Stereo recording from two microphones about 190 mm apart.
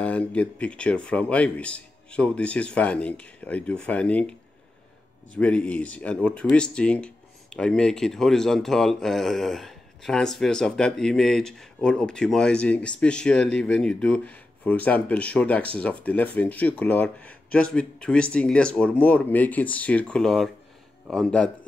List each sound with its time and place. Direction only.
0.0 s speech: 5° left (ahead or behind)